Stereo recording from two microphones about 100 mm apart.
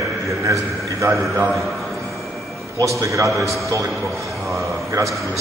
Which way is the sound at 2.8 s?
30° right (ahead or behind).